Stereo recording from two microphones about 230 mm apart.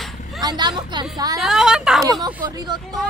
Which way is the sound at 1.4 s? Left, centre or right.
Centre.